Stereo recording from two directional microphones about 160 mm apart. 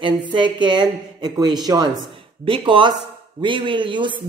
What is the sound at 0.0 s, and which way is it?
A woman's voice, 30° right (ahead or behind).